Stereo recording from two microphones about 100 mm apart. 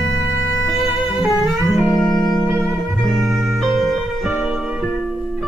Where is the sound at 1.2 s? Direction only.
Centre (ahead or behind).